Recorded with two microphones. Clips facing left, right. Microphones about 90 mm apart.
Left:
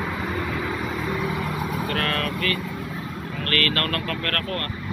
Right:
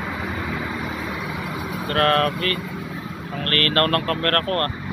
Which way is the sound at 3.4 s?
40° right (ahead or behind).